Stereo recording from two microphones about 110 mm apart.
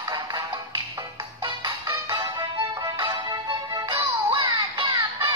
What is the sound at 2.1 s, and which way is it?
Music, 30° right (ahead or behind).